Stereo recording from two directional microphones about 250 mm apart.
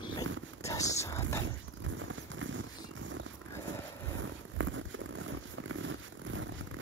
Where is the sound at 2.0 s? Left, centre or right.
Right.